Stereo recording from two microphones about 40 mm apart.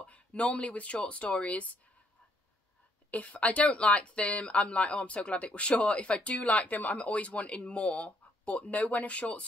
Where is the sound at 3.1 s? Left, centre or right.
Left.